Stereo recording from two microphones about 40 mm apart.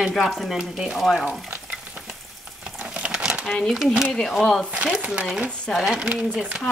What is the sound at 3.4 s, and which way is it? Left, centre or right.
Speech, centre.